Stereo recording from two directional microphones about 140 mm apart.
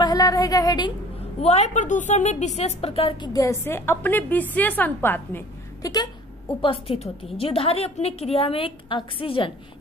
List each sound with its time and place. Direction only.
0.0 s a woman's voice: 25° left (ahead or behind)
1.4 s a woman's voice: 50° left (ahead or behind)
3.3 s a woman's voice: 20° left (ahead or behind)
5.8 s speech: 25° left (ahead or behind)
6.6 s a woman's voice: 45° left (ahead or behind)